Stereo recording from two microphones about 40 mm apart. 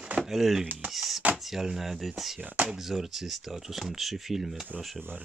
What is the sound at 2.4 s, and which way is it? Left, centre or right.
Speech, right.